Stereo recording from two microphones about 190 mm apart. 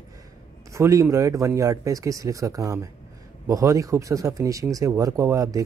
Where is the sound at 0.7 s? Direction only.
15° right (ahead or behind).